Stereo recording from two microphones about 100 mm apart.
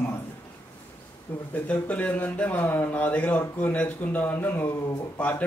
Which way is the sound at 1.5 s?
15° left (ahead or behind).